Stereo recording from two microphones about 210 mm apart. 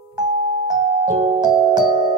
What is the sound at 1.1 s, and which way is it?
Music, 20° right (ahead or behind).